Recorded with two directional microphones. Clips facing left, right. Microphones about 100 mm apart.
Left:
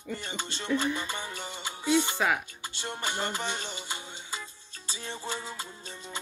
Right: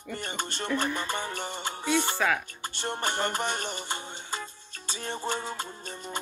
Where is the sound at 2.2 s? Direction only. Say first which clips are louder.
Right 1 dB; 15° left (ahead or behind).